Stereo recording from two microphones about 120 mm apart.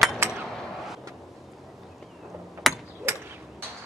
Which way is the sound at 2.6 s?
Centre (ahead or behind).